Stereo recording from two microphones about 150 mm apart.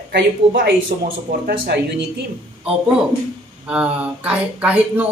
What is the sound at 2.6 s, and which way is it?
Speech, 5° right (ahead or behind).